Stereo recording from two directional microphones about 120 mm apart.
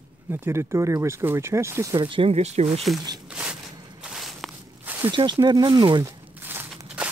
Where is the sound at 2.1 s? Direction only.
50° right (ahead or behind).